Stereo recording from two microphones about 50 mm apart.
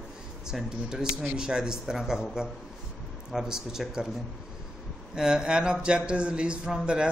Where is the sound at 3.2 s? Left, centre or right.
Centre.